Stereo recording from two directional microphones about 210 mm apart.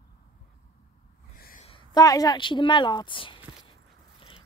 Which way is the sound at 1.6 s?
20° left (ahead or behind).